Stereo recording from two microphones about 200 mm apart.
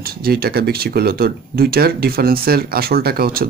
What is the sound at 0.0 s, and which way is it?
Speech, 50° right (ahead or behind).